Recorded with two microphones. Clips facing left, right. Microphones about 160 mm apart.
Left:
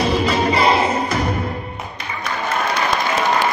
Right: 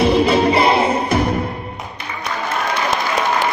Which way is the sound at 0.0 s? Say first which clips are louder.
Right 4 dB; 60° right (ahead or behind).